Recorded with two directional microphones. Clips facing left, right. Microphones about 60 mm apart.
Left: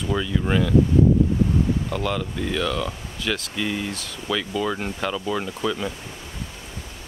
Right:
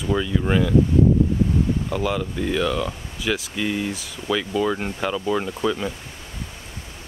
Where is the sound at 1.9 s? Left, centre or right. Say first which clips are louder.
Right 2 dB; centre.